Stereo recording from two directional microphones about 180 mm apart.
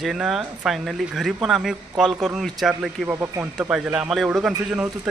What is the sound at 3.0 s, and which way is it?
Speech, 10° right (ahead or behind).